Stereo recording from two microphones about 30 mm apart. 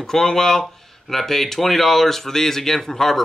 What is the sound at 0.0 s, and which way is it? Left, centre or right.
Speech, centre.